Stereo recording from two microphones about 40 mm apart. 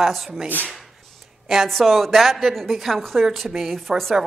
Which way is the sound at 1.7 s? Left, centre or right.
Centre.